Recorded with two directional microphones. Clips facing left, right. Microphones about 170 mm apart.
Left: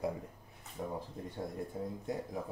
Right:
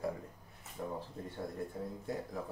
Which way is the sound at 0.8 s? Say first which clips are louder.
Left 1 dB; 15° left (ahead or behind).